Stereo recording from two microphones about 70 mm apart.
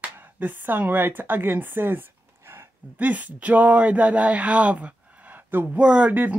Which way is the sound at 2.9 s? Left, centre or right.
Right.